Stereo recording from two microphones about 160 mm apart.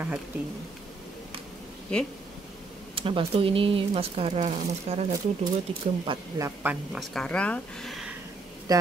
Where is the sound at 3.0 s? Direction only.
35° right (ahead or behind).